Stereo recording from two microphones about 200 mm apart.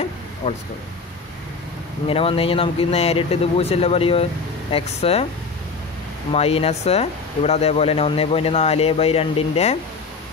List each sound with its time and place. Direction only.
0.4 s speech: 25° left (ahead or behind)
2.0 s speech: 30° left (ahead or behind)
6.3 s speech: 30° left (ahead or behind)